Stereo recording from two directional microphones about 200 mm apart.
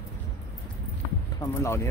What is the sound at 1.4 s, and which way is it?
Speech, 20° left (ahead or behind).